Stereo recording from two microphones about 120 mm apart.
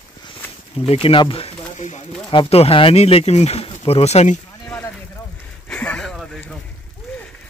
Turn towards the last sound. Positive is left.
turn(degrees=0)  # may be behind; listen again after turning